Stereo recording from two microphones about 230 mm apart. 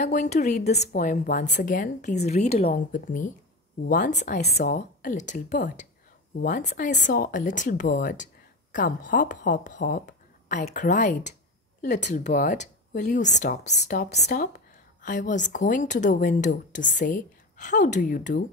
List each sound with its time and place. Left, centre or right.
0.0 s speech: left